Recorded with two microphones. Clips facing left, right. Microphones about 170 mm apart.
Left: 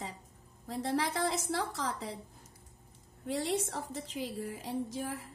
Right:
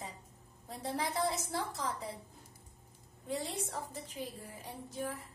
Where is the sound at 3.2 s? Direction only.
90° left.